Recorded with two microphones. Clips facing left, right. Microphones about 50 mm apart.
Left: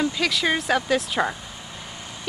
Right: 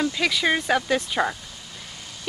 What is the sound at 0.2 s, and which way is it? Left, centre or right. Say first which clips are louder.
Speech: right 1 dB; centre.